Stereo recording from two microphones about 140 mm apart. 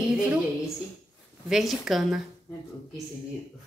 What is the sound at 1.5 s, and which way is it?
Speech, centre (ahead or behind).